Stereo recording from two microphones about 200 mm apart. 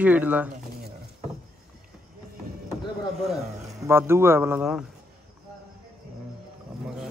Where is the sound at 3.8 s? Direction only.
10° right (ahead or behind).